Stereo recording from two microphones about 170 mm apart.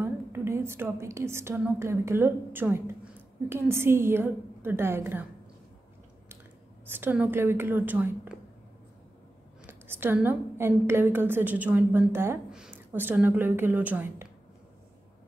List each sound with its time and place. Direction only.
0.0 s a woman's voice: 15° right (ahead or behind)
6.9 s a woman's voice: 10° right (ahead or behind)
9.7 s a woman's voice: 15° right (ahead or behind)